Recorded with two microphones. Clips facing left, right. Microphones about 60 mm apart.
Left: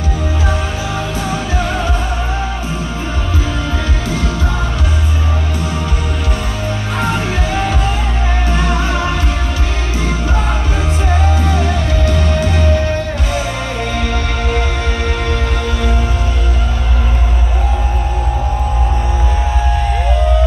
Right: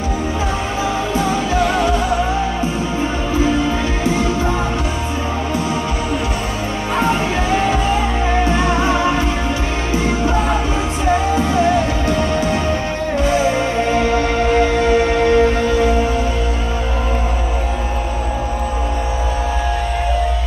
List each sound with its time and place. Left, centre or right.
4.0 s music: right
8.5 s music: right
11.4 s music: right